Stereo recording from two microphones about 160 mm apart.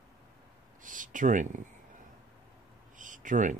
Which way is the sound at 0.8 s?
55° right (ahead or behind).